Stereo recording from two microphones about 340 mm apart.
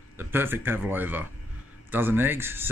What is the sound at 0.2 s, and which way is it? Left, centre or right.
Speech, centre.